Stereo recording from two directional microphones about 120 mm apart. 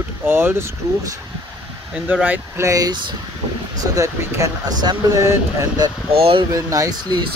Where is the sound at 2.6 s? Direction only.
30° right (ahead or behind).